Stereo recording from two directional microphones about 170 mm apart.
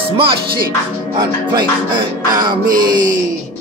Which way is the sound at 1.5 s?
25° right (ahead or behind).